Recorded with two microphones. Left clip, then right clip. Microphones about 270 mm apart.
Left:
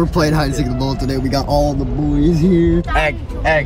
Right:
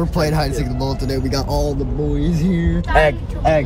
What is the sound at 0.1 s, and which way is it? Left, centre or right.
Speech, centre.